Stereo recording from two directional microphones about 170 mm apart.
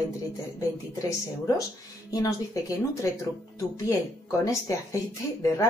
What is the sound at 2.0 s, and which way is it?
Speech, 20° left (ahead or behind).